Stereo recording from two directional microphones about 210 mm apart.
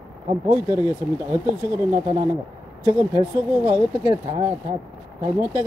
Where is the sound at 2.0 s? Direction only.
35° right (ahead or behind).